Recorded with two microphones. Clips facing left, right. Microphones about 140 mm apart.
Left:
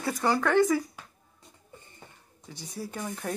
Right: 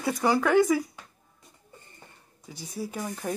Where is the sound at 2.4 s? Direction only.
5° right (ahead or behind).